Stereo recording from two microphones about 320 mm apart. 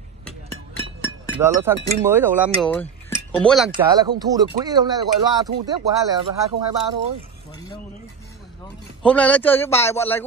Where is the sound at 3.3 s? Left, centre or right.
Centre.